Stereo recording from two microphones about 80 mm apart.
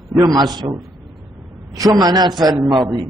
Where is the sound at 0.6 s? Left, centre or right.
Right.